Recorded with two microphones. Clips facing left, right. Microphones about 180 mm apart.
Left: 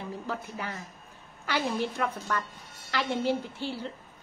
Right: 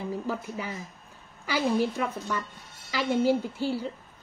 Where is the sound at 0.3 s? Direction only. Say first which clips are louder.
Right 3 dB; 10° right (ahead or behind).